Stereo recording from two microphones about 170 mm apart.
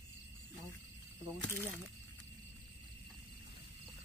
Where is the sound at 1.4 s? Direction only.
5° left (ahead or behind).